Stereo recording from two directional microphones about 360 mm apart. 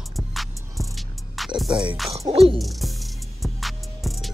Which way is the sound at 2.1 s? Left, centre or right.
Centre.